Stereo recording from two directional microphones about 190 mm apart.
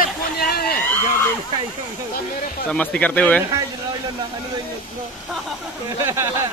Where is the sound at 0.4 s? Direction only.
55° left (ahead or behind).